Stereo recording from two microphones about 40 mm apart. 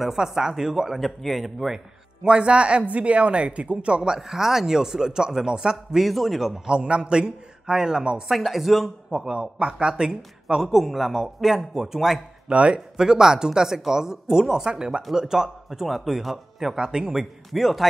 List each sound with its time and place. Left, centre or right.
0.0 s speech: centre
1.0 s a man's voice: centre
2.2 s speech: right
4.2 s speech: centre
5.9 s a man's voice: centre
6.6 s a man's voice: right
8.3 s a man's voice: centre
9.1 s a man's voice: right
10.6 s a man's voice: centre
12.4 s speech: right; by 16.7 s centre
16.7 s speech: centre
17.5 s a man's voice: centre